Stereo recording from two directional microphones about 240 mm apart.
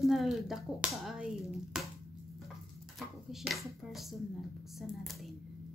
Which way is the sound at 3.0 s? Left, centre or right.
Centre.